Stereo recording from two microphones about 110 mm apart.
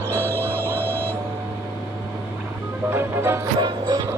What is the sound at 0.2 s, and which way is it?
Music, 20° left (ahead or behind).